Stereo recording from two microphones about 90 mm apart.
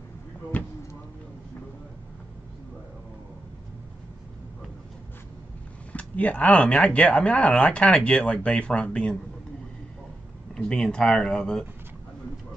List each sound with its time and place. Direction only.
0.5 s speech: 15° left (ahead or behind)
5.9 s speech: 15° left (ahead or behind)
10.5 s speech: 5° left (ahead or behind)